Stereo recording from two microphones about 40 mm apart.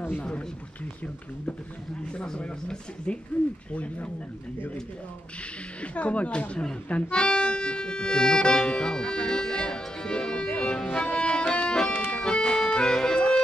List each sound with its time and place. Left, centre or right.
2.1 s speech: left
5.8 s speech: left
11.1 s music: left